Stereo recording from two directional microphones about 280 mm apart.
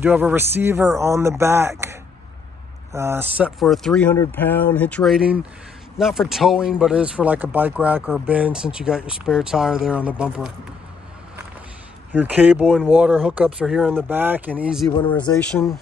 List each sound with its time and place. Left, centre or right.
0.0 s speech: centre
12.1 s speech: centre
14.9 s speech: centre
15.1 s speech: centre